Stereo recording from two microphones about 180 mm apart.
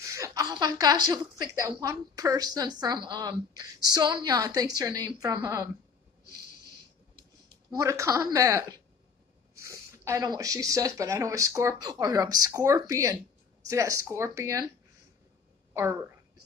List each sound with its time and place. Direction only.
0.0 s a woman's voice: 15° right (ahead or behind)
7.7 s speech: 15° right (ahead or behind)
15.7 s a woman's voice: 15° right (ahead or behind)